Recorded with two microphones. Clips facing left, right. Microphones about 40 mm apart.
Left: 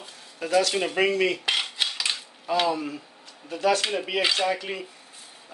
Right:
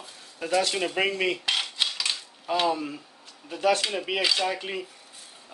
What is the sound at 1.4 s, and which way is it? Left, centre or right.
Cutlery, centre.